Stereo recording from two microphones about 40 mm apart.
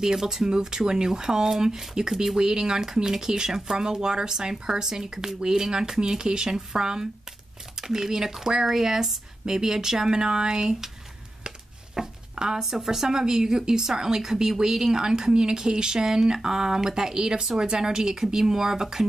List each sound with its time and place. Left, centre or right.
0.0 s speech: centre